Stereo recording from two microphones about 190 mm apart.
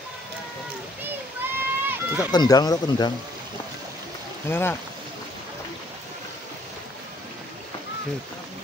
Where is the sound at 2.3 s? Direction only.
20° left (ahead or behind).